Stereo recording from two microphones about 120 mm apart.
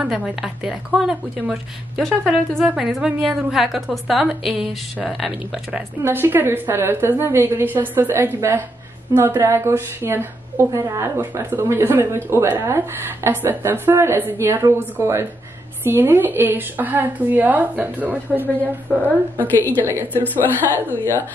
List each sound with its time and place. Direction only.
0.0 s a woman's voice: 5° right (ahead or behind)
6.0 s a woman's voice: 20° right (ahead or behind)
19.4 s a woman's voice: 15° left (ahead or behind)
19.9 s a woman's voice: 20° right (ahead or behind)
20.9 s a woman's voice: 20° left (ahead or behind)